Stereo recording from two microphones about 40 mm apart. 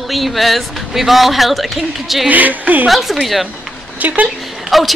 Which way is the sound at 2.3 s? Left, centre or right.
Right.